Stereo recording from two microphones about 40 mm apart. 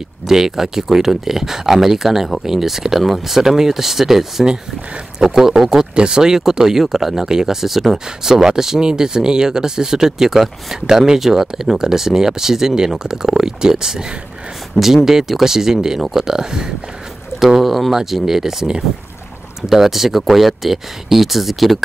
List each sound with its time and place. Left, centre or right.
0.3 s speech: centre
14.7 s speech: left
15.0 s speech: centre
17.4 s speech: centre
17.9 s speech: centre